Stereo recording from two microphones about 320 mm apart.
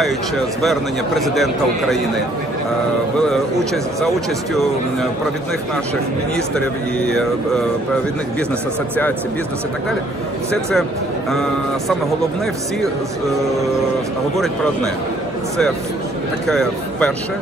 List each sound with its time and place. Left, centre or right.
0.6 s a man's voice: centre
7.1 s a man's voice: centre
10.5 s a man's voice: centre
14.3 s a man's voice: centre
16.4 s a man's voice: centre